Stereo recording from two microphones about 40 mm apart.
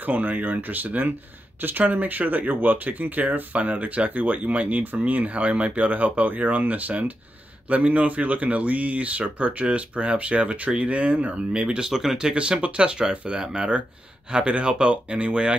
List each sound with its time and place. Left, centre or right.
0.0 s speech: right
11.9 s speech: centre
12.4 s speech: right
13.4 s speech: centre
14.3 s speech: right